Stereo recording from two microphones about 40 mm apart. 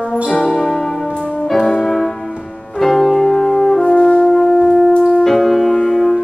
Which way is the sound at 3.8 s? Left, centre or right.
Left.